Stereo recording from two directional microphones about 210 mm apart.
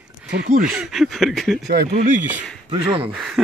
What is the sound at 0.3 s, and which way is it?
Speech, 45° right (ahead or behind).